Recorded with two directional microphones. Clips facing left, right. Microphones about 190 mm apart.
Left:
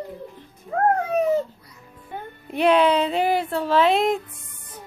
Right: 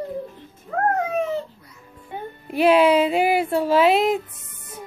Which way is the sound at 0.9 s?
35° left (ahead or behind).